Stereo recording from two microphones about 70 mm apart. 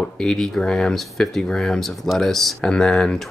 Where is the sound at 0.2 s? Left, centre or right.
Centre.